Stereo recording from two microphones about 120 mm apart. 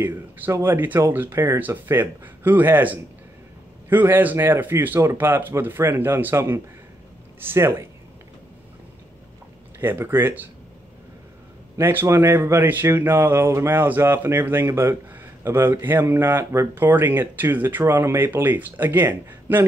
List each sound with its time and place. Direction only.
0.0 s speech: 15° right (ahead or behind)
9.8 s speech: 15° right (ahead or behind)
11.7 s speech: 20° right (ahead or behind)